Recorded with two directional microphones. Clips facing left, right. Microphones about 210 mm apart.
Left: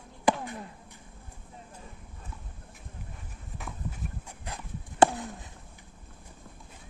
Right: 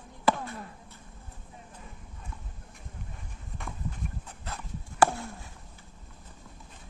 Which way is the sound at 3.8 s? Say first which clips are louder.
Right 1 dB; 55° left (ahead or behind).